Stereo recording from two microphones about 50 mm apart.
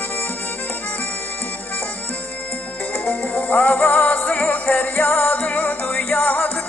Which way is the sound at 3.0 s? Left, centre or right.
Left.